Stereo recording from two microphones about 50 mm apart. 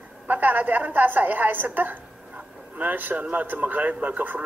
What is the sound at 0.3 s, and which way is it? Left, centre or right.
A man's voice, right.